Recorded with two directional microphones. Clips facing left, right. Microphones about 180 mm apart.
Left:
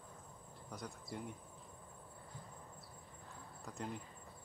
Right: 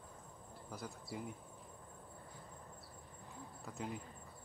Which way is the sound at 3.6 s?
Centre (ahead or behind).